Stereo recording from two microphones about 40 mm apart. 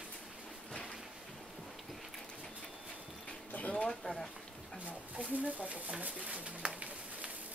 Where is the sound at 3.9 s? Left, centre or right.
Centre.